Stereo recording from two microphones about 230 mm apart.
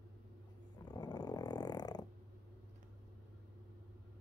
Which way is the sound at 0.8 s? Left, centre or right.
Centre.